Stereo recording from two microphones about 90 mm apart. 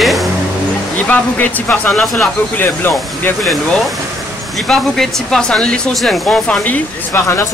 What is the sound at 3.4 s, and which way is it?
Speech, centre (ahead or behind).